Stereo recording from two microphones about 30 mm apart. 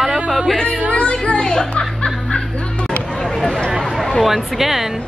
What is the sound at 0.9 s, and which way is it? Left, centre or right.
Speech, left.